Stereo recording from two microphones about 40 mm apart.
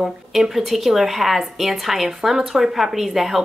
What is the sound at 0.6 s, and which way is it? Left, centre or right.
A woman's voice, centre.